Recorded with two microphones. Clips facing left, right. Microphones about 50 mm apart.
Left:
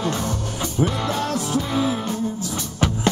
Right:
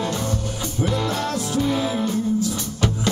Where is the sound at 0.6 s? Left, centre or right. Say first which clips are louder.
Left 2 dB; left.